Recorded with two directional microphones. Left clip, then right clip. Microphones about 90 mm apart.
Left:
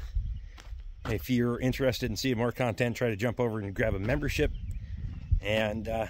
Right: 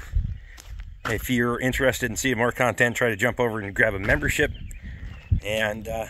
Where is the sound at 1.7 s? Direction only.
20° left (ahead or behind).